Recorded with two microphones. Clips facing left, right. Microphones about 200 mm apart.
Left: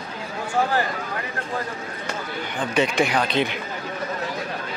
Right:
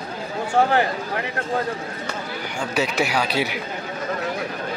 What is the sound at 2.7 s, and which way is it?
Speech, 5° right (ahead or behind).